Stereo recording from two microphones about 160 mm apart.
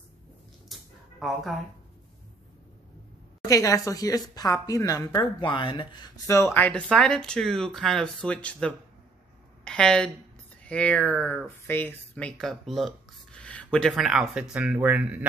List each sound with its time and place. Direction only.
0.7 s a sound: centre (ahead or behind)
1.2 s speech: centre (ahead or behind)
3.4 s a woman's voice: 20° left (ahead or behind); by 15.1 s 10° right (ahead or behind)